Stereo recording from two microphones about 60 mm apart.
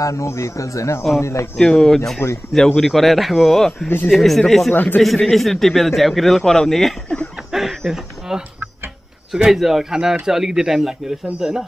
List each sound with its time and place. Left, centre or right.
0.0 s speech: left
1.6 s speech: centre
2.2 s speech: left
2.5 s a man's voice: centre
4.7 s speech: left
5.0 s a man's voice: centre